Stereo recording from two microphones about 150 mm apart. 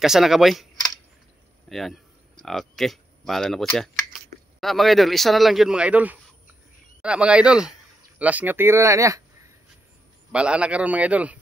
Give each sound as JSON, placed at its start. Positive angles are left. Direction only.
{"t": 0.0, "sound": "speech", "side_deg": 0}
{"t": 1.7, "sound": "speech", "side_deg": 0}
{"t": 10.3, "sound": "speech", "side_deg": -5}